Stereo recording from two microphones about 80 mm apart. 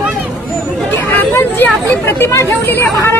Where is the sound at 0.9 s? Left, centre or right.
Left.